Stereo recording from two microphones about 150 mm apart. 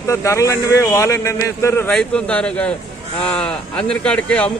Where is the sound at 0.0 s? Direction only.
20° left (ahead or behind).